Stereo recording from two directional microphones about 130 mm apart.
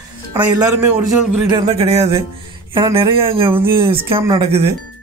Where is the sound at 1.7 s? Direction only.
50° right (ahead or behind).